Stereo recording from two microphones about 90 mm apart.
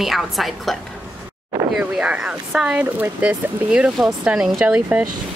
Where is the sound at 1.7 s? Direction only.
10° right (ahead or behind).